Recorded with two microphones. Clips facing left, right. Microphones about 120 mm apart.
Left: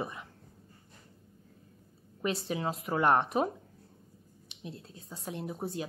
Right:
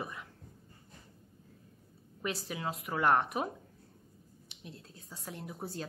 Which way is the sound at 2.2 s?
25° left (ahead or behind).